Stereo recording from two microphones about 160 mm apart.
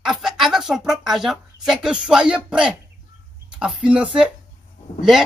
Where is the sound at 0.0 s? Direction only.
5° right (ahead or behind).